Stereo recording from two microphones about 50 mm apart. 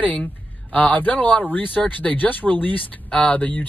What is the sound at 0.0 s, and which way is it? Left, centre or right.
Speech, left.